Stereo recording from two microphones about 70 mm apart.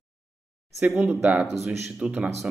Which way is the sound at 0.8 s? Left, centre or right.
Right.